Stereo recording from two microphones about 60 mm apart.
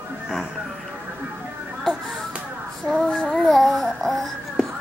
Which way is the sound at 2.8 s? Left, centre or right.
Centre.